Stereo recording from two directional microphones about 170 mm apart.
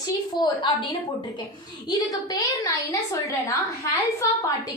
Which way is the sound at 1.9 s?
25° left (ahead or behind).